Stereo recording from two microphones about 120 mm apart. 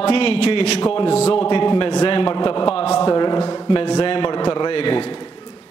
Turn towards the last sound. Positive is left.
turn(degrees=45)  # may be behind; listen again after turning